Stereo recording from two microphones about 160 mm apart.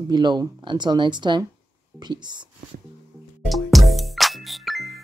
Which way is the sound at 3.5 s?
Centre (ahead or behind).